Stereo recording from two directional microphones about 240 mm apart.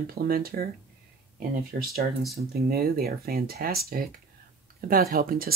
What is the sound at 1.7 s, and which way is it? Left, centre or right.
Speech, right.